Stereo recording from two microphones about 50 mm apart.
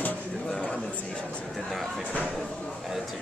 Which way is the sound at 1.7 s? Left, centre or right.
Centre.